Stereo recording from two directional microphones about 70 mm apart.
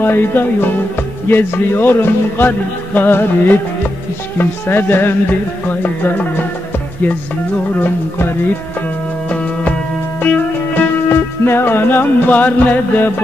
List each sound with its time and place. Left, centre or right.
0.0 s music: left
9.3 s music: centre